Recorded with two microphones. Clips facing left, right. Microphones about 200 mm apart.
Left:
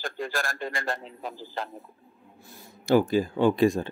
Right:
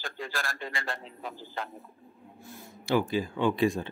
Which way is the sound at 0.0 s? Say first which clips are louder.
Left 5 dB; 45° left (ahead or behind).